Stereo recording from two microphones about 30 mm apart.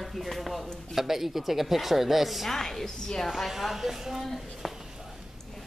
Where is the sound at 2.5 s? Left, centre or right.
Centre.